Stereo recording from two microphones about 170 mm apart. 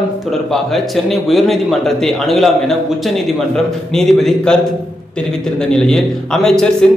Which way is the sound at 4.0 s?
Centre (ahead or behind).